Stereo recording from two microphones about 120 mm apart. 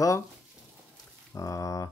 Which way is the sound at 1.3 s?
25° left (ahead or behind).